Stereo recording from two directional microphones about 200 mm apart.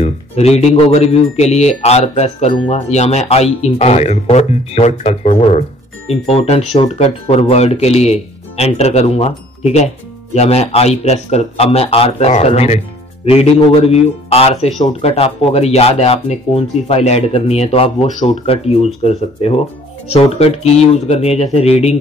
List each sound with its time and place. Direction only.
0.0 s speech: 35° left (ahead or behind)